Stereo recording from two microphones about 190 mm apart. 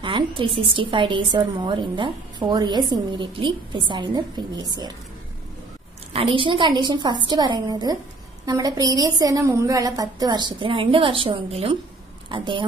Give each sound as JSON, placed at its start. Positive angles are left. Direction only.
{"t": 0.0, "sound": "a woman's voice", "side_deg": -25}
{"t": 6.1, "sound": "a woman's voice", "side_deg": -25}